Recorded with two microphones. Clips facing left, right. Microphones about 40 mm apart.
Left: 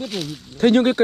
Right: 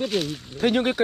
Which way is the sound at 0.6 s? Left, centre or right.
Left.